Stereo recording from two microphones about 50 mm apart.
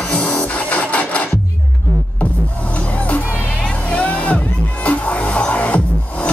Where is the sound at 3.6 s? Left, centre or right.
Left.